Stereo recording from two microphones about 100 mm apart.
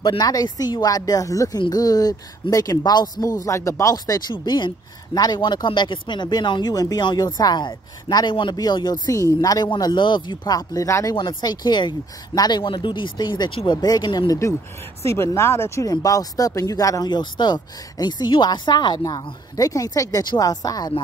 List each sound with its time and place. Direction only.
0.2 s speech: 40° left (ahead or behind)
3.2 s speech: 35° left (ahead or behind)
11.1 s speech: 50° left (ahead or behind); by 15.9 s 25° left (ahead or behind)
15.9 s speech: 40° left (ahead or behind)